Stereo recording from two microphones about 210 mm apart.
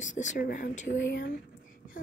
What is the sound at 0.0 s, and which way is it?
Speech, 35° left (ahead or behind).